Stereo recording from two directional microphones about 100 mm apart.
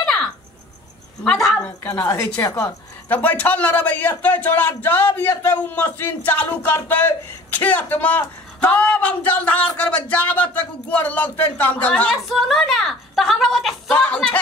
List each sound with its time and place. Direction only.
1.2 s a woman's voice: 5° left (ahead or behind)
1.8 s speech: 15° left (ahead or behind); by 13.9 s centre (ahead or behind)
13.9 s speech: 15° left (ahead or behind)